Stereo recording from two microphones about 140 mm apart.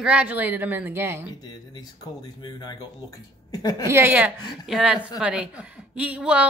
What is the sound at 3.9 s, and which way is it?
A woman's voice, 15° right (ahead or behind).